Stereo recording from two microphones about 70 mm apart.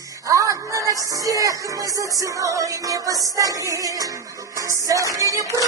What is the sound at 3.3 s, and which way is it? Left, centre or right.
Music, right.